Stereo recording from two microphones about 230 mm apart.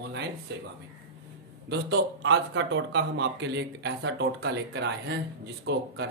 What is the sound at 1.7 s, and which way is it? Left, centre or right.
Speech, right.